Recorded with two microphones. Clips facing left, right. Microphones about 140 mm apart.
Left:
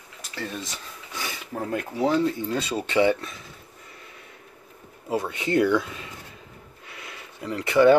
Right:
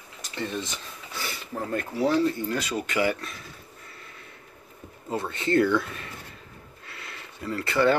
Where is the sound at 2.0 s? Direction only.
20° left (ahead or behind).